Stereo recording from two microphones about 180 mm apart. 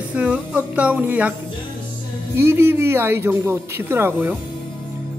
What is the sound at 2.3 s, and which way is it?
Speech, 15° right (ahead or behind).